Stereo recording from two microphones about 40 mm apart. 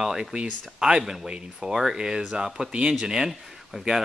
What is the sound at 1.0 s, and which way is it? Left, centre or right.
Speech, centre.